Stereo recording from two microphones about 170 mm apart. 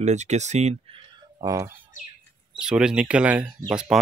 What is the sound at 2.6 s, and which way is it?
Speech, 5° right (ahead or behind).